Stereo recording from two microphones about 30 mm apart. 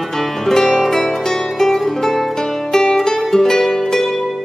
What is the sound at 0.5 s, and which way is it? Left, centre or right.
Music, centre.